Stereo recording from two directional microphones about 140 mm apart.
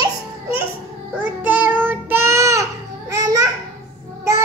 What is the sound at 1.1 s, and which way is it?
Child singing, 10° right (ahead or behind).